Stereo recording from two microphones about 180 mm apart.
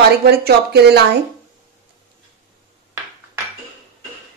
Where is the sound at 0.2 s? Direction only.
60° right (ahead or behind).